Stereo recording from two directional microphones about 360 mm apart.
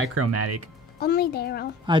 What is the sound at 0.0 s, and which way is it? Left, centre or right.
Speech, right.